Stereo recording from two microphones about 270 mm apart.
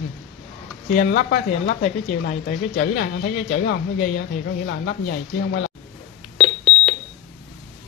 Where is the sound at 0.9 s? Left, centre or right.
Left.